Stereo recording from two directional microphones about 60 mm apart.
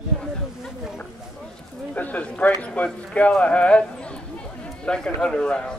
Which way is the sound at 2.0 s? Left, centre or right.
Left.